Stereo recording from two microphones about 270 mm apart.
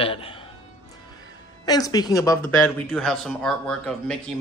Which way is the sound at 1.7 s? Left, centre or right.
Centre.